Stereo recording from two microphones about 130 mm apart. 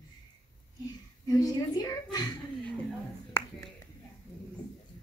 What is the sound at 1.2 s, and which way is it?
Speech, 30° left (ahead or behind).